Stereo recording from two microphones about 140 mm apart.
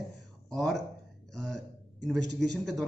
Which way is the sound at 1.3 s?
5° left (ahead or behind).